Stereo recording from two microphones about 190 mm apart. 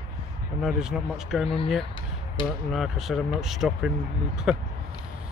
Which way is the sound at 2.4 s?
25° left (ahead or behind).